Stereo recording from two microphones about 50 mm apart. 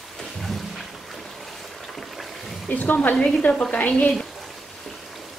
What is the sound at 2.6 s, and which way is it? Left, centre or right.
Speech, left.